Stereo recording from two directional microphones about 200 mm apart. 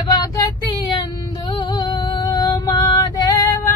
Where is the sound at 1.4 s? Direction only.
25° left (ahead or behind).